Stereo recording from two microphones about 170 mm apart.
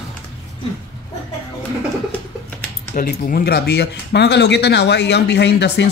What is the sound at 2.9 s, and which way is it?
Speech, 60° left (ahead or behind).